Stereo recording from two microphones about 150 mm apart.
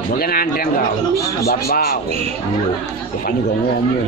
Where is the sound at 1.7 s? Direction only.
90° left.